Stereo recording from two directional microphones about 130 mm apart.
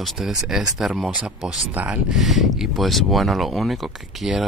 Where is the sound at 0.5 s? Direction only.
Centre (ahead or behind).